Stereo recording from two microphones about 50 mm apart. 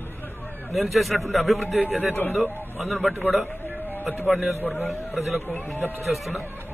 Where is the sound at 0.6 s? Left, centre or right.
Centre.